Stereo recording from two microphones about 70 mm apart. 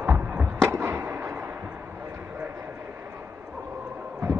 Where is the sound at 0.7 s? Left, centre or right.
Right.